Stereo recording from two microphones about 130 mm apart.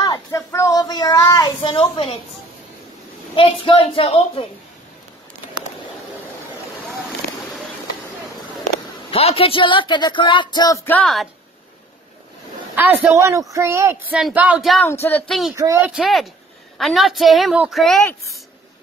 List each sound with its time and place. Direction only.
0.0 s a sound: 25° left (ahead or behind); by 2.1 s 45° left (ahead or behind)
3.6 s speech: 45° left (ahead or behind)
9.1 s speech: 45° left (ahead or behind)
12.7 s a man's voice: 20° right (ahead or behind)
14.1 s speech: 10° right (ahead or behind)
14.8 s speech: 15° left (ahead or behind)
15.2 s a woman's voice: centre (ahead or behind)
15.5 s a man's voice: 25° right (ahead or behind)
15.9 s a woman's voice: centre (ahead or behind)